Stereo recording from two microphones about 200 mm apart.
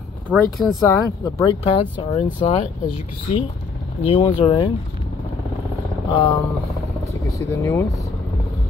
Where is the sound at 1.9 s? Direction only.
25° left (ahead or behind).